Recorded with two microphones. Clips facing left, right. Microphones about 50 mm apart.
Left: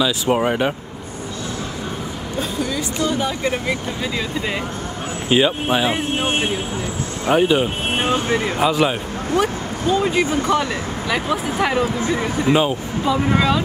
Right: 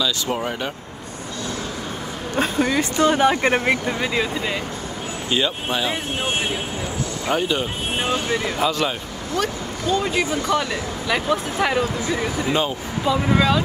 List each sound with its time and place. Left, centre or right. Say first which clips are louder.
0.0 s speech: left 5 dB; left
2.3 s speech: right 4 dB; right
4.0 s speech: right 2 dB; centre
5.3 s speech: left 6 dB; left
7.2 s speech: left 6 dB; centre
8.0 s speech: left 3 dB; left
8.6 s speech: left 4 dB; centre
11.1 s speech: even; centre